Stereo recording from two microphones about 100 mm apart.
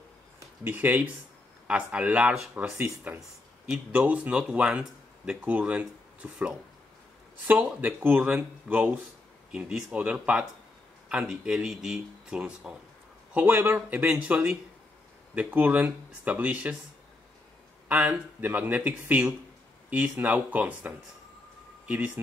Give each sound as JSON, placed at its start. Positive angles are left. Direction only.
{"t": 0.7, "sound": "speech", "side_deg": -15}
{"t": 9.5, "sound": "a man's voice", "side_deg": -5}
{"t": 17.8, "sound": "speech", "side_deg": -15}